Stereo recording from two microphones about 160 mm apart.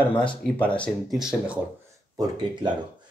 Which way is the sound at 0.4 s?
5° left (ahead or behind).